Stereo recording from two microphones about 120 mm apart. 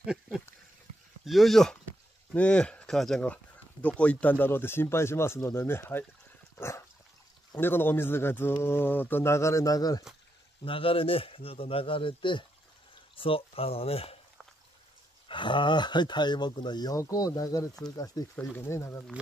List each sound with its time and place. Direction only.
0.0 s a sound: 5° right (ahead or behind)
1.2 s speech: centre (ahead or behind); by 6.0 s 20° left (ahead or behind)
7.5 s speech: 15° left (ahead or behind)
10.6 s speech: 50° left (ahead or behind)
15.2 s speech: 40° left (ahead or behind); by 19.0 s 20° left (ahead or behind)